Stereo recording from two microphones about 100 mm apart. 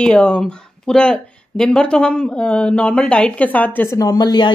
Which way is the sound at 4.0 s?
40° left (ahead or behind).